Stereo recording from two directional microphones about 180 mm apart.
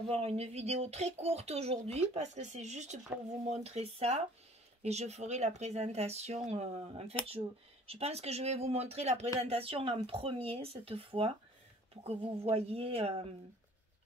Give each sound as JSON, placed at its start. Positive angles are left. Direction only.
{"t": 0.1, "sound": "speech", "side_deg": -35}